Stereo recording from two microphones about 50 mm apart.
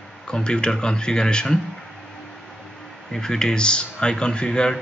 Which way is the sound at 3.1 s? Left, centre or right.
Centre.